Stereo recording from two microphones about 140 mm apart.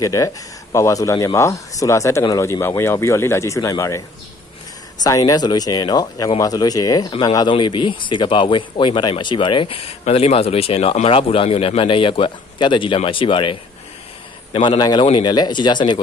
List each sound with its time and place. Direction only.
0.0 s speech: 20° left (ahead or behind)
5.0 s speech: 25° left (ahead or behind)